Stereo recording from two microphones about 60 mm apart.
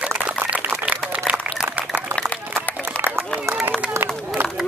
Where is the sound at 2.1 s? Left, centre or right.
Right.